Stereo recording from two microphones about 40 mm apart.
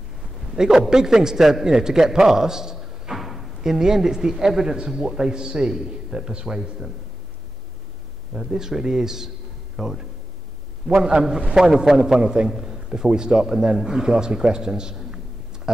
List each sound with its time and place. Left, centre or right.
0.2 s a man's voice: centre
8.3 s a man's voice: centre
11.0 s a man's voice: right